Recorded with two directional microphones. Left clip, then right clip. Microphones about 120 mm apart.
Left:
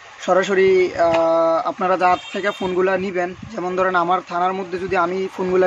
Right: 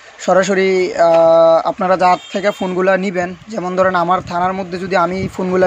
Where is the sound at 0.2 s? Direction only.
30° right (ahead or behind).